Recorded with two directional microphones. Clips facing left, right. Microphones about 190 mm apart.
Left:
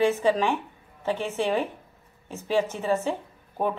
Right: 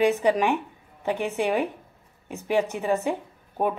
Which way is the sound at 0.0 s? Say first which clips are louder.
Right 1 dB; 15° right (ahead or behind).